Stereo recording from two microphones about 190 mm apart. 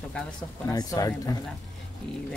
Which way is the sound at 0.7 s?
20° left (ahead or behind).